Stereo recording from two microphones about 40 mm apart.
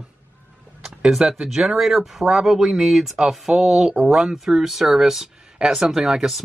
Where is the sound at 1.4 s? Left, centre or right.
Centre.